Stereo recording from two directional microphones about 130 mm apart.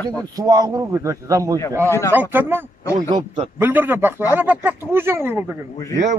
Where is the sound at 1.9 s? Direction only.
20° left (ahead or behind).